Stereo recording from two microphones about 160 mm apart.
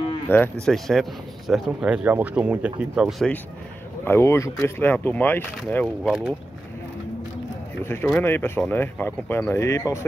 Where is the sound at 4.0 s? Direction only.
15° left (ahead or behind).